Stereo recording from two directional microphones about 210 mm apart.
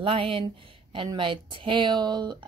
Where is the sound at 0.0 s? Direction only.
25° right (ahead or behind).